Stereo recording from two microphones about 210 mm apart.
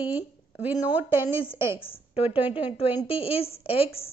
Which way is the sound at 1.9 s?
25° left (ahead or behind).